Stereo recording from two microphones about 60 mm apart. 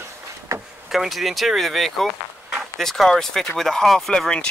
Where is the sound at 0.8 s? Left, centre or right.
Centre.